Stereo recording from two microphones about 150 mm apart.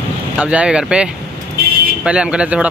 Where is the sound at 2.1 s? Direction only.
5° right (ahead or behind).